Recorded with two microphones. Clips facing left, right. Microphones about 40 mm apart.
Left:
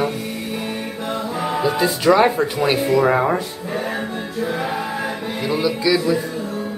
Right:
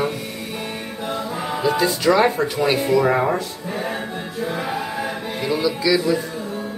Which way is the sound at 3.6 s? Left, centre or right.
Centre.